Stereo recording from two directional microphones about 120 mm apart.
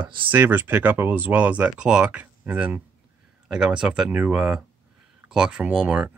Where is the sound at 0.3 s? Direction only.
15° right (ahead or behind).